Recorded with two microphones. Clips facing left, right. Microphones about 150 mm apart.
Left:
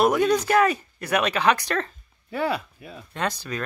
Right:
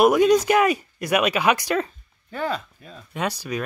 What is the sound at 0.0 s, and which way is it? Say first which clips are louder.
Speech: right 4 dB; 15° right (ahead or behind).